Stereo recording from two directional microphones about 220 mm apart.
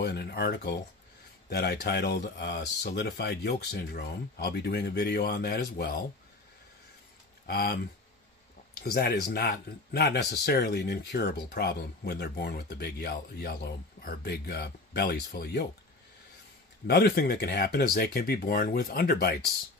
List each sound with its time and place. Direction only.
0.0 s speech: 45° left (ahead or behind)
7.4 s speech: 45° left (ahead or behind)
16.8 s speech: 45° left (ahead or behind)